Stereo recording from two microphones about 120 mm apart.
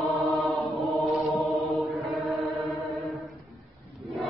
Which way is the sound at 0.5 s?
Centre (ahead or behind).